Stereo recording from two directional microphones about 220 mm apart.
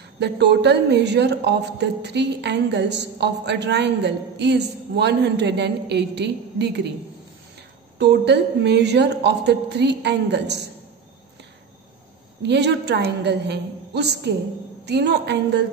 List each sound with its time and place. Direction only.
0.2 s speech: 50° right (ahead or behind)
8.0 s speech: 50° right (ahead or behind)
12.4 s speech: 50° right (ahead or behind)